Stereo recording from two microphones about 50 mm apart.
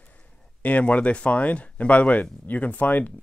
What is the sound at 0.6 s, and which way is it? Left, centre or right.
Speech, left.